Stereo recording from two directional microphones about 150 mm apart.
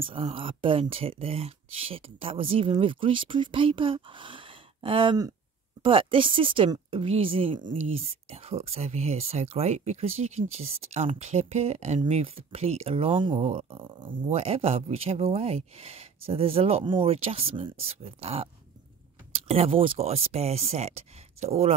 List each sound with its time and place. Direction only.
0.0 s speech: 35° right (ahead or behind)